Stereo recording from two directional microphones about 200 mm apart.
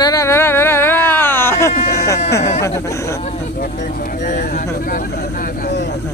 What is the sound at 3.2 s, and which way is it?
Vehicle, 40° left (ahead or behind).